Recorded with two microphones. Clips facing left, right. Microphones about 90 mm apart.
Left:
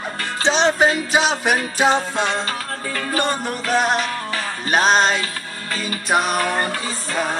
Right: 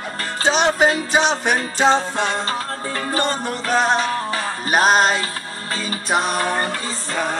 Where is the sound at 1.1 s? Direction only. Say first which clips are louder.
Even; 5° left (ahead or behind).